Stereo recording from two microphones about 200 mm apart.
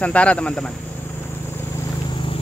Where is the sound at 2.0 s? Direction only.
25° left (ahead or behind).